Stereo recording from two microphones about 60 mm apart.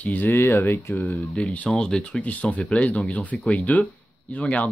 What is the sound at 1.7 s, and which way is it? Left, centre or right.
Speech, centre.